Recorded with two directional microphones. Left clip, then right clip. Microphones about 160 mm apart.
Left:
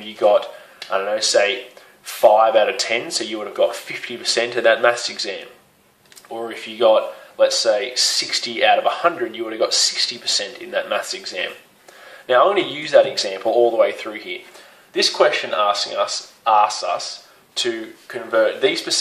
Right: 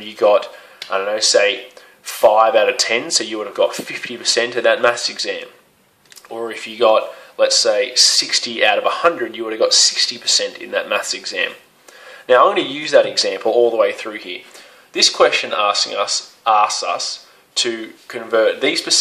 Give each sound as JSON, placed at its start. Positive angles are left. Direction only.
{"t": 0.2, "sound": "speech", "side_deg": -30}